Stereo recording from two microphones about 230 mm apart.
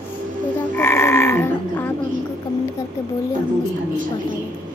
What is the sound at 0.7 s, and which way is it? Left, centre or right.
Sheep, centre.